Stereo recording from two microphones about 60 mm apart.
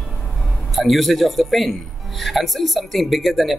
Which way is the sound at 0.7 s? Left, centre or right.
Centre.